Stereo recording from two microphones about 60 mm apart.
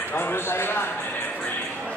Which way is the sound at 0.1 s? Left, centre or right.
Left.